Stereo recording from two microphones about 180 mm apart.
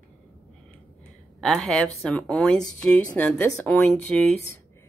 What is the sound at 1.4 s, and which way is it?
A woman's voice, 5° left (ahead or behind).